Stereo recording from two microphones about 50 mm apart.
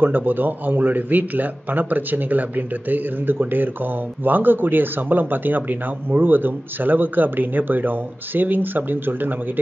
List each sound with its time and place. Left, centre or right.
0.0 s a man's voice: right